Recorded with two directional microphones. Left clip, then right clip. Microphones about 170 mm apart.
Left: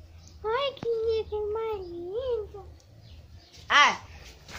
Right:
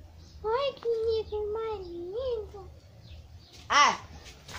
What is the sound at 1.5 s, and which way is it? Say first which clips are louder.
Speech: left 2 dB; 25° left (ahead or behind).